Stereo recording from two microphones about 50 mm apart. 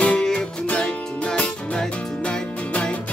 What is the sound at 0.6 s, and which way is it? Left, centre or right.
Music, left.